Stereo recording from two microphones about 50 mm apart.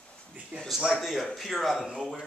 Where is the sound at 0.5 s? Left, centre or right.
Right.